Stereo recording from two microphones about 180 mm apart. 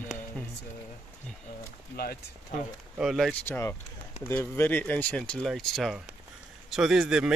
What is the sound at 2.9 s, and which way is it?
Speech, centre (ahead or behind).